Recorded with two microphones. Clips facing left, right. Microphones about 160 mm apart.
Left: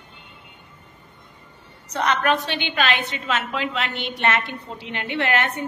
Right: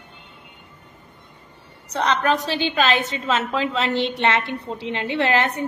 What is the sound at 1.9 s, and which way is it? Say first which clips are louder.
A woman's voice: right 1 dB; 35° right (ahead or behind).